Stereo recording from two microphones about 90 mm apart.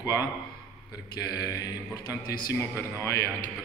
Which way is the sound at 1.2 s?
45° left (ahead or behind).